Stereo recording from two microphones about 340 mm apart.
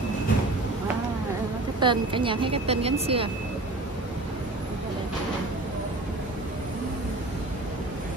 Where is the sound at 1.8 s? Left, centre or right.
Centre.